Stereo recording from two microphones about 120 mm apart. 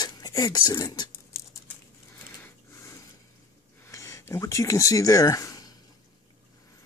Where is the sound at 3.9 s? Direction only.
25° left (ahead or behind).